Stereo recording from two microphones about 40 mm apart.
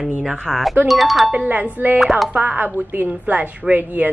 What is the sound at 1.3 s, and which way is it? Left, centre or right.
A woman's voice, right.